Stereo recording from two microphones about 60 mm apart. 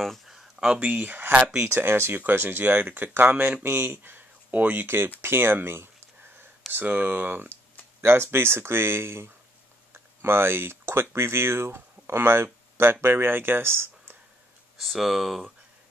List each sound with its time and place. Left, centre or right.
0.3 s a sound: centre
0.7 s speech: right
6.7 s speech: right
8.0 s speech: right
14.8 s speech: centre